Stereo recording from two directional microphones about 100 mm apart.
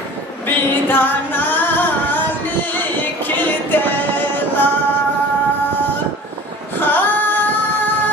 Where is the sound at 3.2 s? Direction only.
20° left (ahead or behind).